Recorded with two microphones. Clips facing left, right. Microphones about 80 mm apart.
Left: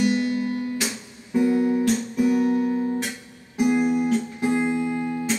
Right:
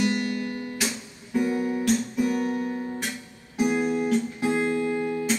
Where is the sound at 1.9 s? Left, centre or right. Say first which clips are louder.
Left 3 dB; centre.